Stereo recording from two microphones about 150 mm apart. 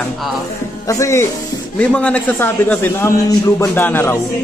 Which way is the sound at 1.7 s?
10° left (ahead or behind).